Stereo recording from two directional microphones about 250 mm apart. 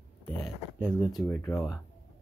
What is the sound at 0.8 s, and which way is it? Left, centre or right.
Speech, centre.